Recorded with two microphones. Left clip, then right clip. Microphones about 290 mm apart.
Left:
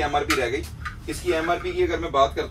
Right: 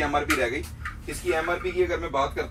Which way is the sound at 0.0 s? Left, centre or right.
Centre.